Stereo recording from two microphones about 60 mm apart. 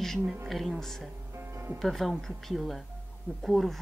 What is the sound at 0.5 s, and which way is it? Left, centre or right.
Speech, centre.